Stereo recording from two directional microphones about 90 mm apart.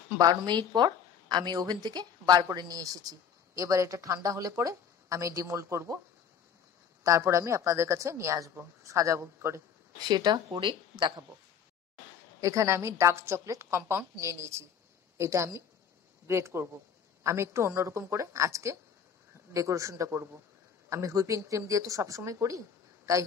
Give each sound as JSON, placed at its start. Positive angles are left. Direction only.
{"t": 0.2, "sound": "a woman's voice", "side_deg": -50}
{"t": 7.0, "sound": "speech", "side_deg": -35}
{"t": 9.9, "sound": "speech", "side_deg": -50}
{"t": 12.4, "sound": "speech", "side_deg": -35}